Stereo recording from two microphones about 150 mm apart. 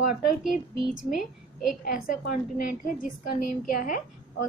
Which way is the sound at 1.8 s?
70° left (ahead or behind).